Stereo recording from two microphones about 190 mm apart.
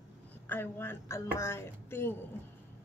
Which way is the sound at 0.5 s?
10° left (ahead or behind).